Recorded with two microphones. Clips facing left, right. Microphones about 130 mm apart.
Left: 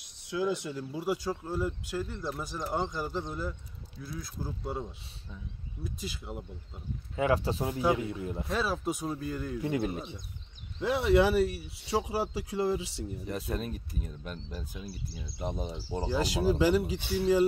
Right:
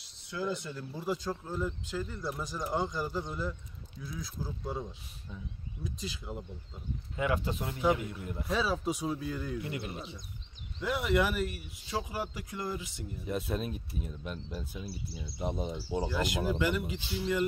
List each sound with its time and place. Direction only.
0.3 s speech: 15° left (ahead or behind)
7.2 s speech: 30° left (ahead or behind)
8.5 s speech: centre (ahead or behind)
9.6 s speech: 40° left (ahead or behind)
10.8 s speech: 30° left (ahead or behind)
13.5 s speech: 5° right (ahead or behind)
16.1 s speech: 35° left (ahead or behind)